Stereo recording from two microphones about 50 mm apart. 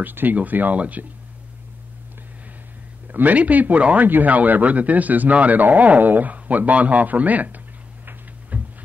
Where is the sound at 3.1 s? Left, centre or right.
Right.